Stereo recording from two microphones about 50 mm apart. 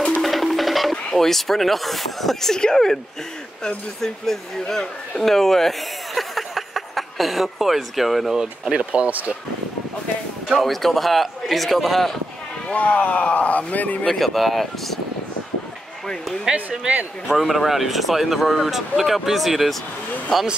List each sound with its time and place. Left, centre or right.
0.2 s speech: centre
8.4 s speech: centre
10.5 s speech: centre
12.6 s speech: left
14.0 s speech: centre
17.3 s speech: centre